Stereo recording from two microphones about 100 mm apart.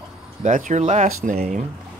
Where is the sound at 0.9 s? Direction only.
90° right.